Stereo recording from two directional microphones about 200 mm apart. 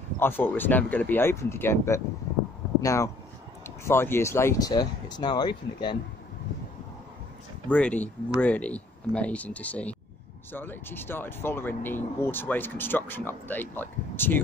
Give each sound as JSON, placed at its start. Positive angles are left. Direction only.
{"t": 0.2, "sound": "speech", "side_deg": 10}
{"t": 7.7, "sound": "speech", "side_deg": 5}